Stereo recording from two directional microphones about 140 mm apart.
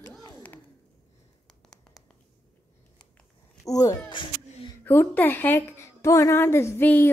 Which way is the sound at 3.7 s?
25° left (ahead or behind).